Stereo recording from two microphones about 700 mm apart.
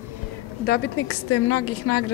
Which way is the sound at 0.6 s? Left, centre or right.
Centre.